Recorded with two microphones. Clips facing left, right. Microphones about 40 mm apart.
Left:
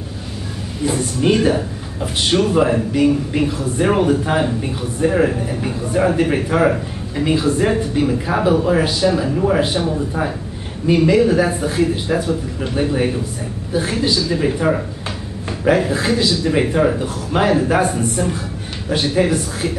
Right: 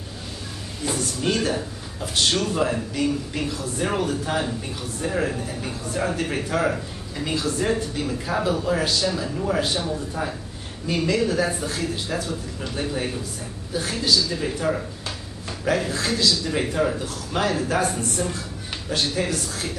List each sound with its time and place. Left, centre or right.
0.8 s speech: left